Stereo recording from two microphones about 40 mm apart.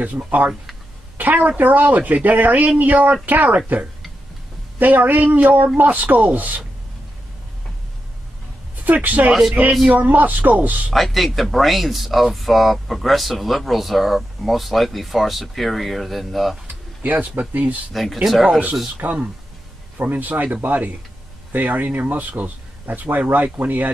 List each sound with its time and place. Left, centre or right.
0.0 s a woman's voice: right
4.7 s speech: right
8.8 s speech: right
9.3 s speech: centre
9.8 s speech: right
10.9 s speech: centre
17.0 s speech: right
17.9 s speech: centre
19.0 s speech: right